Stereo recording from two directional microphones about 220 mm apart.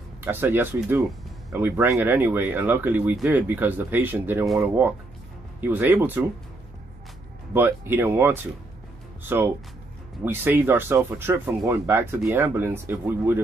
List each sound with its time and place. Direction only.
0.2 s speech: 10° right (ahead or behind)
7.5 s speech: 10° right (ahead or behind)